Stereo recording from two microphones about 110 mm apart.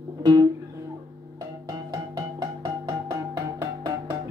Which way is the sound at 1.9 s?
35° right (ahead or behind).